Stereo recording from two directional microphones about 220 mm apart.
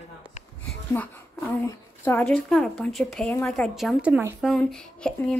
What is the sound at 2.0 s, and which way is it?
A woman's voice, 10° left (ahead or behind).